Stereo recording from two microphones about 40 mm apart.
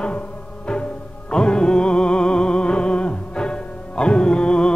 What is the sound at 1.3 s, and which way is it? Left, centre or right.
Music, left.